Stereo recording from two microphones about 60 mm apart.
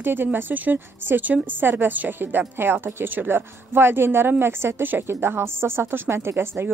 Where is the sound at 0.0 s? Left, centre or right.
Right.